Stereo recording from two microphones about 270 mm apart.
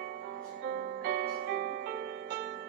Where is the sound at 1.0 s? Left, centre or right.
Right.